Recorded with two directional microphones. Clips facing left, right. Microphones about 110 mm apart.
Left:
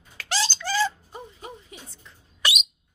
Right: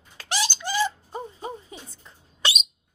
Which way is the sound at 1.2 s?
30° right (ahead or behind).